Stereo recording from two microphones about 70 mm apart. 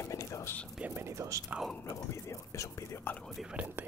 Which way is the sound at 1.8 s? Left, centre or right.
Left.